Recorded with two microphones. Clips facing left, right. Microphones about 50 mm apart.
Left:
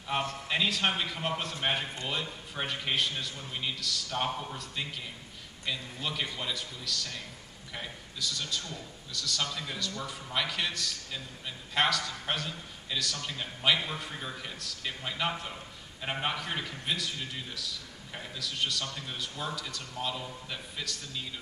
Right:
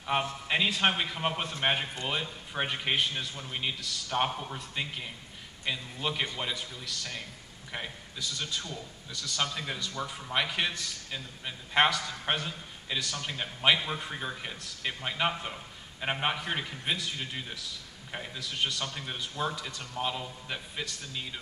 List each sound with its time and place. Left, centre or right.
0.0 s a man's voice: right